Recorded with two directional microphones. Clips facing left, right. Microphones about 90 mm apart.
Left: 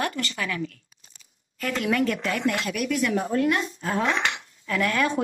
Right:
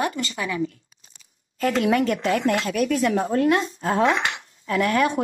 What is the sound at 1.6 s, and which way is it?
Speech, 35° right (ahead or behind).